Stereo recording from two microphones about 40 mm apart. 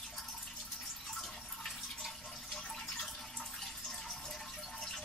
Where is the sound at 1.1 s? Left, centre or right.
Centre.